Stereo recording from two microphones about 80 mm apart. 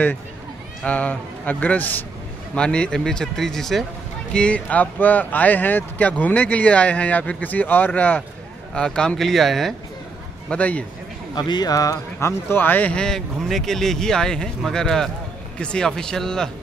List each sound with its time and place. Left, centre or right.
0.8 s speech: centre
10.5 s speech: centre
11.3 s speech: left
11.7 s speech: left
12.9 s speech: centre